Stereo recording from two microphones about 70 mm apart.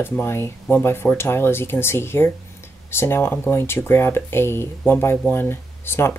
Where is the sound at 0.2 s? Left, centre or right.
Left.